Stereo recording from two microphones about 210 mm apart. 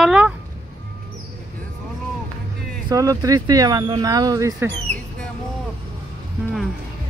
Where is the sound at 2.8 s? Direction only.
15° right (ahead or behind).